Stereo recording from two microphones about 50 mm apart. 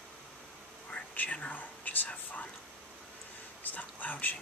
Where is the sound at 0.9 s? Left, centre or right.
Left.